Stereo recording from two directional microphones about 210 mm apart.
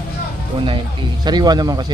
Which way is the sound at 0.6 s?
20° right (ahead or behind).